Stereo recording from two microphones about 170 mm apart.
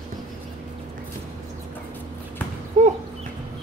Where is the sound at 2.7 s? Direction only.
45° right (ahead or behind).